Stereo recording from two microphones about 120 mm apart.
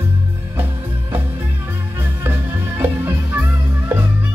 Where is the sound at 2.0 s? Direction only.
20° right (ahead or behind).